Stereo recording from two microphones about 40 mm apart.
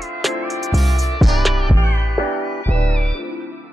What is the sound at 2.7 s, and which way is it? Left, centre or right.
Music, left.